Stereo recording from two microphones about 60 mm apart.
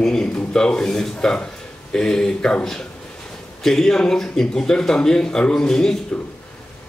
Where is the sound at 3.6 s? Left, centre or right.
Centre.